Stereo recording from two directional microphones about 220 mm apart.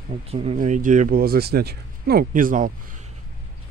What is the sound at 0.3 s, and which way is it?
Speech, 25° right (ahead or behind).